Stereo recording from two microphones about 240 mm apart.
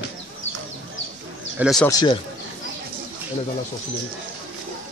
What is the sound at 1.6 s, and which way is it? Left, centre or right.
Speech, centre.